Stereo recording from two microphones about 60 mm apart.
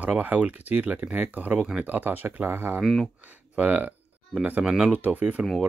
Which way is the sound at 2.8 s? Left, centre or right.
Centre.